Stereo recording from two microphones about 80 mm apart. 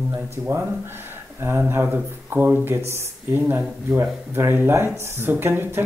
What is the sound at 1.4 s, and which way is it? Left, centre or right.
Speech, right.